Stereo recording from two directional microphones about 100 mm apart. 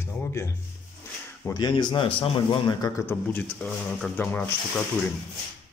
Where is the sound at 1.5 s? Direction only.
50° left (ahead or behind).